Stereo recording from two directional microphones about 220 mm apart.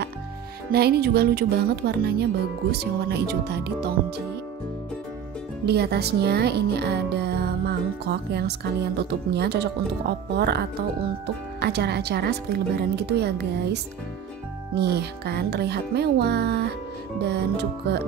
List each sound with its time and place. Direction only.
0.7 s speech: 45° right (ahead or behind)
5.7 s speech: 45° right (ahead or behind)
14.8 s speech: 50° right (ahead or behind)